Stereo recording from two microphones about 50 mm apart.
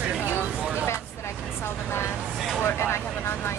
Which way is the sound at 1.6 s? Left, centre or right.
Left.